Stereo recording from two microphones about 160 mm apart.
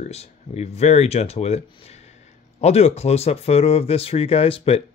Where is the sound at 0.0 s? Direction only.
40° left (ahead or behind).